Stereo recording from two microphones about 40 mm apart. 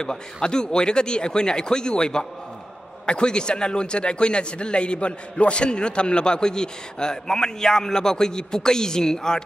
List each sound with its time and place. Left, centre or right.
0.0 s speech: centre